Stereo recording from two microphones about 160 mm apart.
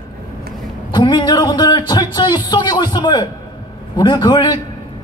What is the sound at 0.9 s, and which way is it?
Speech, 30° left (ahead or behind).